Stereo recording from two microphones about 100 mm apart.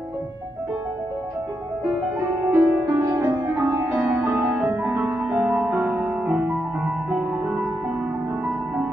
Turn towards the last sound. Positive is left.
turn(degrees=-15)  # may be behind; listen again after turning